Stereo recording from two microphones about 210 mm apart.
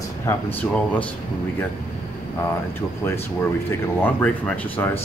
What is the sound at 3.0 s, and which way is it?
Speech, 10° left (ahead or behind).